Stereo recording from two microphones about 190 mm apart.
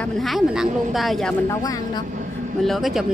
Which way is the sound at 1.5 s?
20° left (ahead or behind).